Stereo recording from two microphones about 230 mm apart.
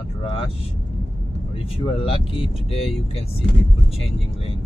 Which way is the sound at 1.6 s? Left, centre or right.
Left.